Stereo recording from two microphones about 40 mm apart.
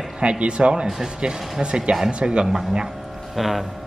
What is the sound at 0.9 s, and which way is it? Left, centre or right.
Speech, centre.